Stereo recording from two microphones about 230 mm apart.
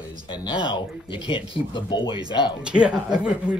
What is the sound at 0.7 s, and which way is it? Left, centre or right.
Speech, left.